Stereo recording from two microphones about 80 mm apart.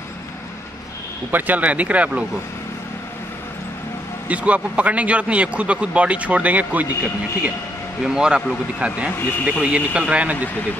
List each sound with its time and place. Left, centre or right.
1.3 s a man's voice: centre
4.3 s a man's voice: centre
8.0 s a man's voice: centre
9.1 s speech: left
9.5 s a man's voice: centre